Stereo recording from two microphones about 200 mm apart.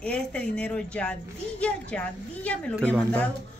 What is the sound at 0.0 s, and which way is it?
A woman's voice, 5° left (ahead or behind).